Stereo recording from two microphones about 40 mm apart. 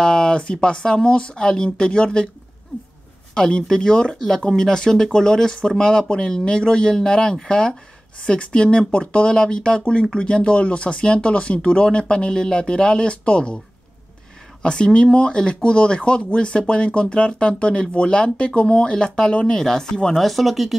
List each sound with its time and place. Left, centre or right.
0.0 s speech: centre
3.3 s speech: left
14.6 s speech: left
20.2 s speech: centre